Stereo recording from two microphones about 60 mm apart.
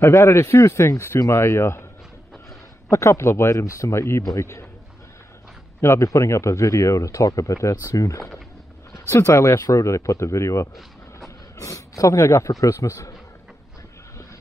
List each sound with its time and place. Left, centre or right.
0.1 s speech: left
2.9 s speech: left
5.8 s speech: left
11.1 s a man's voice: left